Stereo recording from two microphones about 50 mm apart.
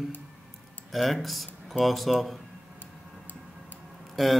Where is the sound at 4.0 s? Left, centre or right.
Centre.